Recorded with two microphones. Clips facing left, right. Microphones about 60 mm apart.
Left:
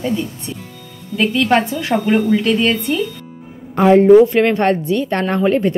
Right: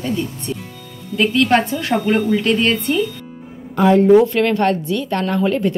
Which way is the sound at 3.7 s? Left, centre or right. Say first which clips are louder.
Left 3 dB; left.